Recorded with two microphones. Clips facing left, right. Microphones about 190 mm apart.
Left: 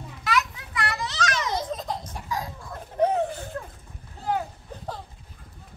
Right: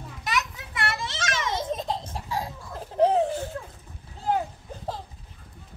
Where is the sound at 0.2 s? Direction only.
20° right (ahead or behind).